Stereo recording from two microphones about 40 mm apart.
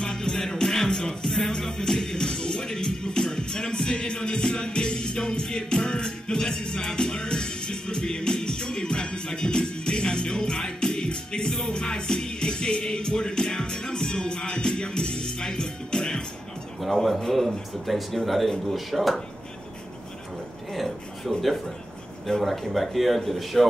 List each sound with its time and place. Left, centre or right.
0.0 s music: centre
16.8 s a man's voice: centre
20.7 s speech: centre